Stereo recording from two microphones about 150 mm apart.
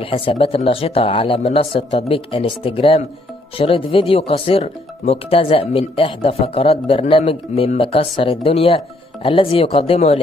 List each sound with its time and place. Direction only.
0.0 s speech: 35° left (ahead or behind)